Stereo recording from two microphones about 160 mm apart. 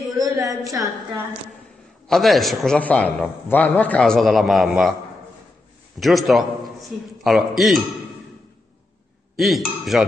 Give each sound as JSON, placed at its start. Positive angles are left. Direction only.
{"t": 0.2, "sound": "a sound", "side_deg": -20}
{"t": 2.0, "sound": "a man's voice", "side_deg": 0}
{"t": 5.9, "sound": "a man's voice", "side_deg": 0}
{"t": 9.4, "sound": "a man's voice", "side_deg": 0}